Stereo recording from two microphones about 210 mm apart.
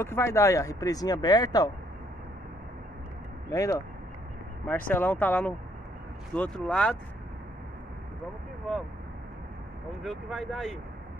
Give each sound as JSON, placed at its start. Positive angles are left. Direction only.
{"t": 0.0, "sound": "speech", "side_deg": 10}
{"t": 3.4, "sound": "speech", "side_deg": 15}
{"t": 10.0, "sound": "speech", "side_deg": 0}